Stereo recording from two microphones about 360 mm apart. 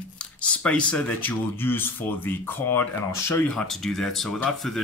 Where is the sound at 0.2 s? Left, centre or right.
Centre.